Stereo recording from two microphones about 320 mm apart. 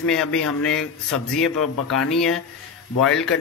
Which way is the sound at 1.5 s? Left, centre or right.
Left.